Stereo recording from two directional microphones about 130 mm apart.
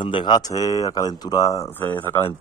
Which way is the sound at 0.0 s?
35° left (ahead or behind).